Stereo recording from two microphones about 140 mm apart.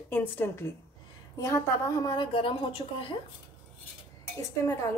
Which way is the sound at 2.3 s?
40° left (ahead or behind).